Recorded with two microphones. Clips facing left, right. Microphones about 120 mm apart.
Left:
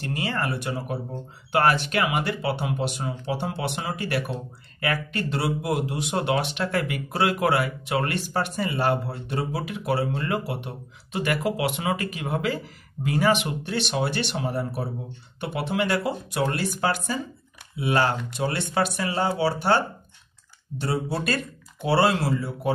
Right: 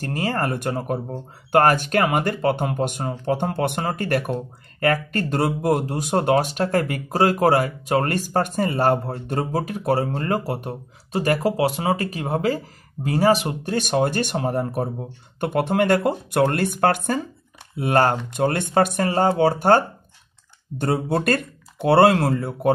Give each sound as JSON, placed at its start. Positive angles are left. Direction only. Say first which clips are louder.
{"t": 0.0, "sound": "speech", "louder": "right 4 dB", "side_deg": -45}